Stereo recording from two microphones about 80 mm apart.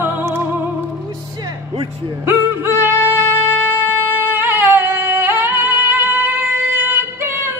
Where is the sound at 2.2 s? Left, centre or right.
Right.